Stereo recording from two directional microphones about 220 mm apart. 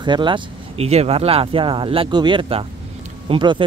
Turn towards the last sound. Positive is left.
turn(degrees=-20)  # may be behind; listen again after turning